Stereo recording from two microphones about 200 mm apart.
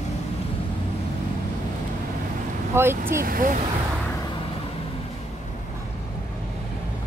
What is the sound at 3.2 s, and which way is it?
Speech, 45° right (ahead or behind).